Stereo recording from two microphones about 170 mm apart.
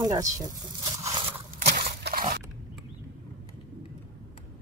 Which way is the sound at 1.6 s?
70° right (ahead or behind).